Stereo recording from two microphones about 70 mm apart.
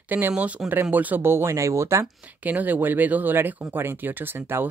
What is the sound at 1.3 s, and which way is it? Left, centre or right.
Speech, right.